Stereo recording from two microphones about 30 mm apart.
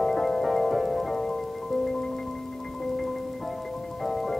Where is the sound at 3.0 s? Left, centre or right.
Centre.